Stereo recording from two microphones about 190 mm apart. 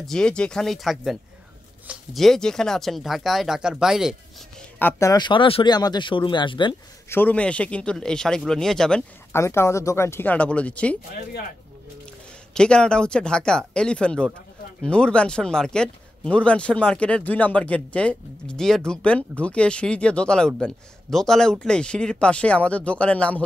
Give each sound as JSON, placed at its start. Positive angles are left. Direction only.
{"t": 0.0, "sound": "speech", "side_deg": 5}
{"t": 4.7, "sound": "speech", "side_deg": 15}
{"t": 7.1, "sound": "speech", "side_deg": 10}
{"t": 9.3, "sound": "speech", "side_deg": 15}
{"t": 12.5, "sound": "speech", "side_deg": 5}